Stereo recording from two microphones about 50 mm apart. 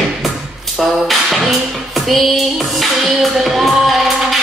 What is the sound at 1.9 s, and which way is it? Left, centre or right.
Music, centre.